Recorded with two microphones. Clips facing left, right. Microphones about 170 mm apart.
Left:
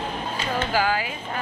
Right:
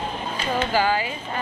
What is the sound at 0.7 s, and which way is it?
Speech, 5° left (ahead or behind).